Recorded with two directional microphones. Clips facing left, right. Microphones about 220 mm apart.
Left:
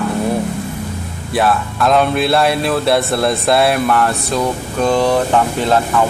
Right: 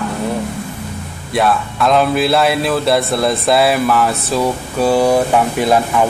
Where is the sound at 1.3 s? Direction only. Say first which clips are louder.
Even; centre (ahead or behind).